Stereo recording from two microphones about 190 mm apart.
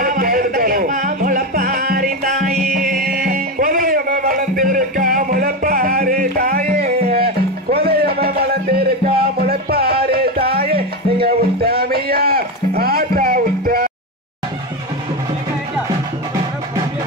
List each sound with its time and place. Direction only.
0.0 s music: 45° right (ahead or behind)
7.2 s music: 55° right (ahead or behind)